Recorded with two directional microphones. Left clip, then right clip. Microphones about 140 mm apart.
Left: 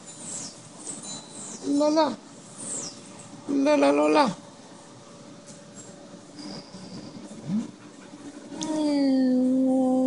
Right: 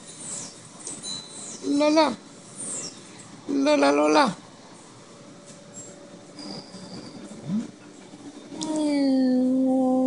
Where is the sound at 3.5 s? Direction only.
Centre (ahead or behind).